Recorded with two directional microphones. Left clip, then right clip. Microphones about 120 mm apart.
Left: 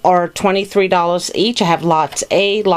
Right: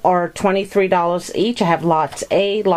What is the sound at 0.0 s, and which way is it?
Speech, 35° left (ahead or behind).